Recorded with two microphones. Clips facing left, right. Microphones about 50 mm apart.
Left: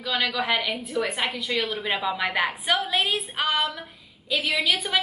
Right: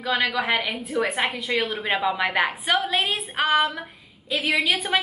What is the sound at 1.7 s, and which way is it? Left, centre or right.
A woman's voice, centre.